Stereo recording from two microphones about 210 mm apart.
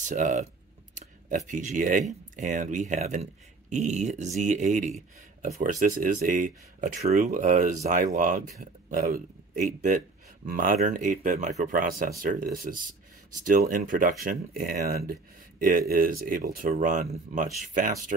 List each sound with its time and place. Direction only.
0.0 s speech: 35° right (ahead or behind)